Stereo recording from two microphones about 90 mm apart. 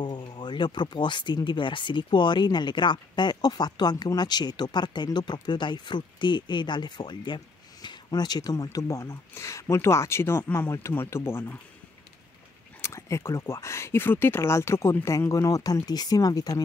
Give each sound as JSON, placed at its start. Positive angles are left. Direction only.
{"t": 0.0, "sound": "speech", "side_deg": 55}
{"t": 12.8, "sound": "speech", "side_deg": 30}